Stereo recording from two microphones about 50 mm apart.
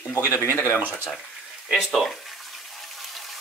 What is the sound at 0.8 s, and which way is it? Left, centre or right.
Speech, left.